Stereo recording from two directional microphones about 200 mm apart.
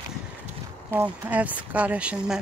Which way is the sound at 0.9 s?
10° right (ahead or behind).